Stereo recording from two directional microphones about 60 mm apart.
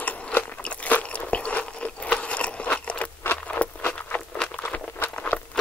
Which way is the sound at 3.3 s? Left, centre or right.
Left.